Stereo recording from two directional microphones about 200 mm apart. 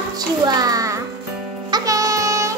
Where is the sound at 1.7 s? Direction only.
20° right (ahead or behind).